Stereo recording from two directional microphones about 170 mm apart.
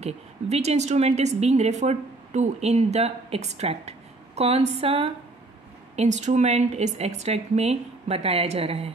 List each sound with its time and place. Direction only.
0.0 s a woman's voice: 40° right (ahead or behind)